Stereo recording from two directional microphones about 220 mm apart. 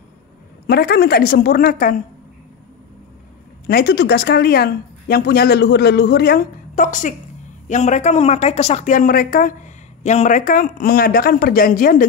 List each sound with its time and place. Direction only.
0.7 s speech: 45° left (ahead or behind)
3.6 s a woman's voice: 45° left (ahead or behind)